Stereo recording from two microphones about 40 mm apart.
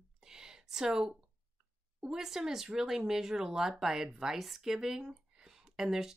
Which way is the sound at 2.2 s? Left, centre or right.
Centre.